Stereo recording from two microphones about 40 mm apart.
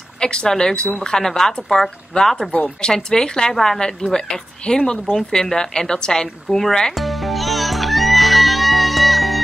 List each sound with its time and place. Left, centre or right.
0.2 s speech: centre
2.5 s speech: left
2.9 s speech: centre
6.9 s music: centre